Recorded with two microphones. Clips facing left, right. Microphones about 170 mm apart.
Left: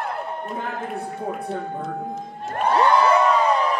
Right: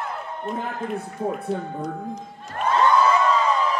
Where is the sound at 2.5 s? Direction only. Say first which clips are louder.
Left 1 dB; 65° left (ahead or behind).